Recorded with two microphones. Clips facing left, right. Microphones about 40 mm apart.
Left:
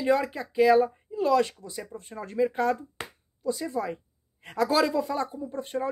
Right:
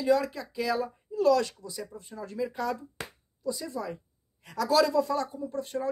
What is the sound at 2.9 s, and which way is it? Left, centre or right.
Finger snapping, left.